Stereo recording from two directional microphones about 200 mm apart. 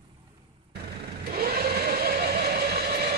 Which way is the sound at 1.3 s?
50° right (ahead or behind).